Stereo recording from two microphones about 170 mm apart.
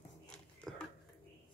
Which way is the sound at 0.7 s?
Centre (ahead or behind).